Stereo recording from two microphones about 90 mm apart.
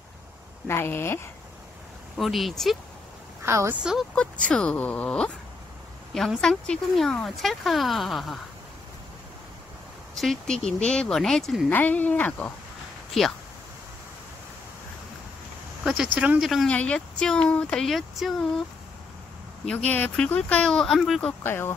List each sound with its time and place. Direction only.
0.7 s speech: 25° left (ahead or behind)
2.1 s speech: centre (ahead or behind)
3.4 s a woman's voice: 30° right (ahead or behind)
4.1 s speech: 10° left (ahead or behind)
10.1 s speech: 5° left (ahead or behind)
11.7 s speech: 20° left (ahead or behind)
13.2 s speech: 5° left (ahead or behind)
15.8 s speech: 5° right (ahead or behind)
16.6 s speech: 10° left (ahead or behind)
19.6 s speech: 10° left (ahead or behind)
21.4 s speech: 25° left (ahead or behind)